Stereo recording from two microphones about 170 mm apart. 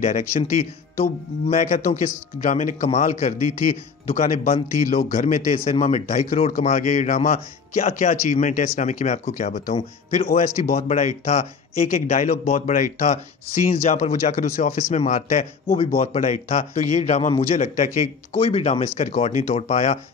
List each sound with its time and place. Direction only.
0.0 s speech: 40° left (ahead or behind)